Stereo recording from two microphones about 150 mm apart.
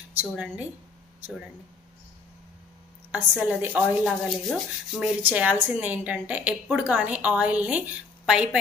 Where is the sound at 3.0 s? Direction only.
10° right (ahead or behind).